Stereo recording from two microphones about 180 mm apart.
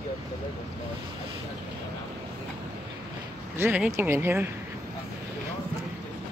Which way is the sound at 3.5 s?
10° right (ahead or behind).